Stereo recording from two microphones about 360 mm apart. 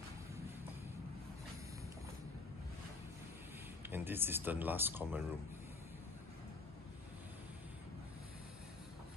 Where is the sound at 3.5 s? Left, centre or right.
Centre.